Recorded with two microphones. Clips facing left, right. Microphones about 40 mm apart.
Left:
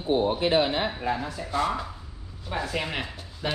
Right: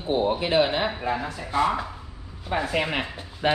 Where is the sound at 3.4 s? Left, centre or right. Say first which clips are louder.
Right 7 dB; right.